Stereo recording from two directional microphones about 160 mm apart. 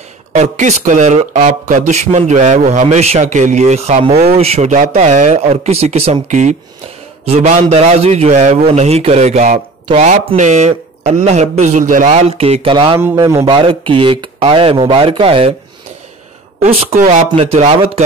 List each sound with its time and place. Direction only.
0.3 s a man's voice: 45° right (ahead or behind); by 13.5 s 20° right (ahead or behind)
13.5 s speech: 35° right (ahead or behind)
16.5 s speech: 45° right (ahead or behind)
17.3 s speech: 40° right (ahead or behind)